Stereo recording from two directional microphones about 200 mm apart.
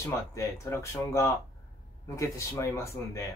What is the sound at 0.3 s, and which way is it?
Speech, 15° left (ahead or behind).